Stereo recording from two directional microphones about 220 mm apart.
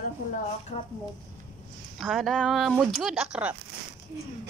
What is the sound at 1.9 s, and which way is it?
A woman's voice, centre (ahead or behind).